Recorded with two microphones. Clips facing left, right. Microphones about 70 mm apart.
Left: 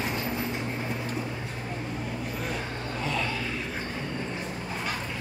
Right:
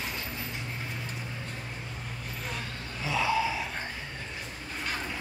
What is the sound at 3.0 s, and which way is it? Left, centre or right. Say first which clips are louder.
Vehicle: right 4 dB; centre.